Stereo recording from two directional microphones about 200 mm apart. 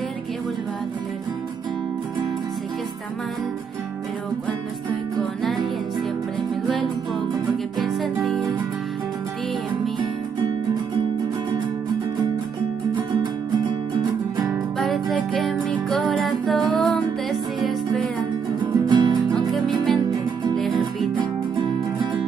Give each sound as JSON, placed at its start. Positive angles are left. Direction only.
{"t": 7.8, "sound": "music", "side_deg": 0}
{"t": 14.8, "sound": "music", "side_deg": 0}
{"t": 18.7, "sound": "music", "side_deg": -20}
{"t": 19.3, "sound": "music", "side_deg": 0}